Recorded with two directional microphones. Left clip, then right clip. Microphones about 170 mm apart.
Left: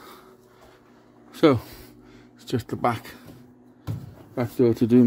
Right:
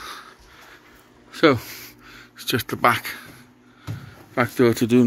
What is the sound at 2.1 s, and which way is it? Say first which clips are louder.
Speech: right 6 dB; 15° left (ahead or behind).